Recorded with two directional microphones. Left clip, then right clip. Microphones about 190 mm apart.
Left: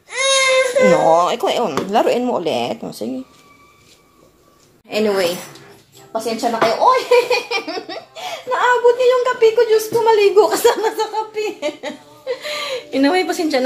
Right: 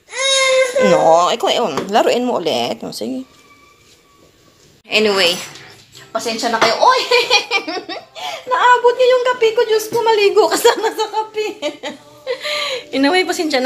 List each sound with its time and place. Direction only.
0.2 s baby cry: 40° left (ahead or behind)
1.0 s speech: 5° left (ahead or behind)
4.8 s speech: 5° left (ahead or behind)
6.4 s speech: 5° left (ahead or behind)
7.4 s speech: 15° right (ahead or behind)